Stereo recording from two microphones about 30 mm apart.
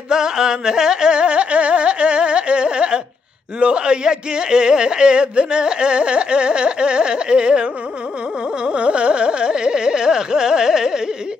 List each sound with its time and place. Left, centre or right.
0.1 s carnatic music: right
3.5 s speech: right
8.7 s carnatic music: right; by 11.0 s centre